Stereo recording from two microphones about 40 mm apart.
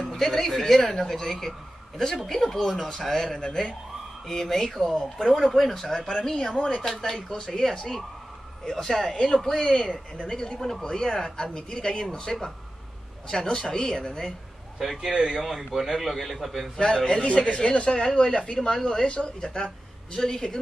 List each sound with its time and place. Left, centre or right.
0.1 s speech: centre
3.4 s speech: centre
5.2 s speech: centre
6.6 s speech: left
7.0 s speech: centre
14.8 s speech: centre
15.1 s speech: centre
15.4 s speech: centre
16.7 s speech: centre
19.0 s speech: left